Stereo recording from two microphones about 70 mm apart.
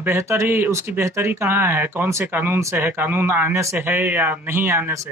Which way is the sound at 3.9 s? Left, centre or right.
Right.